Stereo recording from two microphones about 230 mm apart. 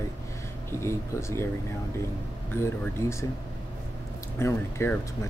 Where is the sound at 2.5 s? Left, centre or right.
Centre.